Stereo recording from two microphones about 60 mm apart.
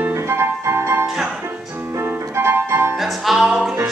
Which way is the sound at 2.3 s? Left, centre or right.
Right.